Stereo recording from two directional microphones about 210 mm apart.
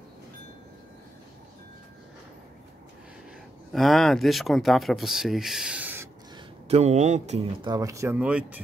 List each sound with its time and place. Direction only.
3.7 s speech: centre (ahead or behind)
6.3 s speech: 30° right (ahead or behind)
7.7 s speech: 15° right (ahead or behind)